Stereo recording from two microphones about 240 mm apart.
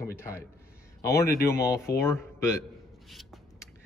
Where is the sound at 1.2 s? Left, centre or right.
Left.